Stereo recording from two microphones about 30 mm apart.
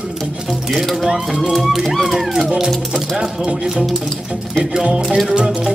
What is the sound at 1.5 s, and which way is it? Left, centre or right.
Speech, centre.